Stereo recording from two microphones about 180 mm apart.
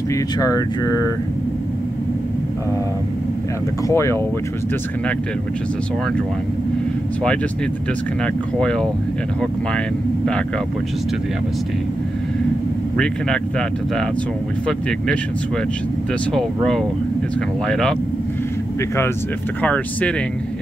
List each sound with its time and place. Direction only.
0.1 s speech: 20° left (ahead or behind)
3.9 s speech: 15° left (ahead or behind)
8.5 s speech: 5° left (ahead or behind)
12.9 s speech: 5° left (ahead or behind)
16.3 s speech: 5° left (ahead or behind)
19.6 s speech: 5° left (ahead or behind)